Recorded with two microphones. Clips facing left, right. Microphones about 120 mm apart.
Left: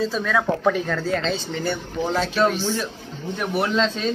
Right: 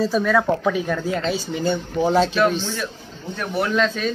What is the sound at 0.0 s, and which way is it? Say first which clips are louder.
Speech: right 4 dB; 5° right (ahead or behind).